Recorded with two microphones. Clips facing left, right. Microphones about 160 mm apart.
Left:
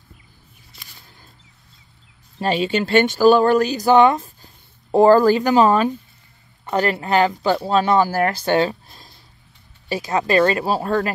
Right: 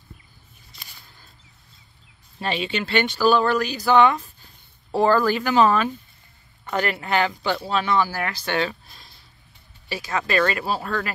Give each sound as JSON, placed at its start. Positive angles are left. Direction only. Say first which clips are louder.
{"t": 2.4, "sound": "speech", "louder": "left 6 dB", "side_deg": 40}